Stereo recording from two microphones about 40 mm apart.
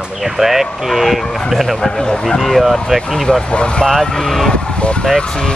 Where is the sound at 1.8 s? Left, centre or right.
Centre.